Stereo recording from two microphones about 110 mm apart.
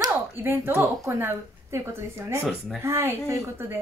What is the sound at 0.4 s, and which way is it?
A woman's voice, 20° right (ahead or behind).